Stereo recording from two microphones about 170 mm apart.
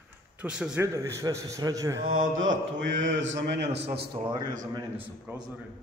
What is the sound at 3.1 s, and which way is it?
Speech, 90° right.